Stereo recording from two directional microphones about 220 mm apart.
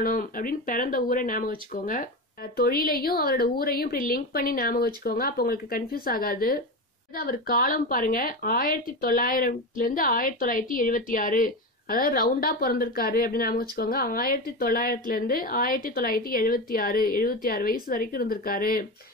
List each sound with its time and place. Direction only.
0.0 s speech: 40° left (ahead or behind)